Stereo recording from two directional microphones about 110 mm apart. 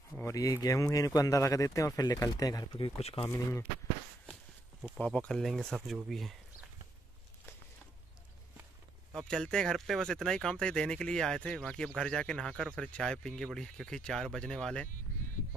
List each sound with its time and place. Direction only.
0.2 s speech: 30° left (ahead or behind)
3.0 s speech: 70° left (ahead or behind)
3.3 s speech: 25° left (ahead or behind)
4.9 s speech: 10° left (ahead or behind)
9.3 s speech: 5° left (ahead or behind)